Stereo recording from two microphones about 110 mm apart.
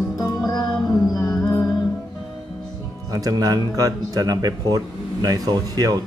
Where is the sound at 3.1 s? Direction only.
35° right (ahead or behind).